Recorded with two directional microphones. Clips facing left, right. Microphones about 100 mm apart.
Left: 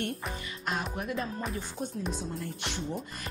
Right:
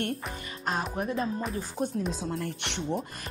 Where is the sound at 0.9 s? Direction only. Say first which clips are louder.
Right 4 dB; 35° right (ahead or behind).